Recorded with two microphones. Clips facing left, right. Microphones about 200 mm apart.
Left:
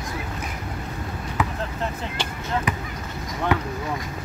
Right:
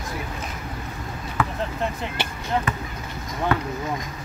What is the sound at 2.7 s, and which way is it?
Speech, 15° left (ahead or behind).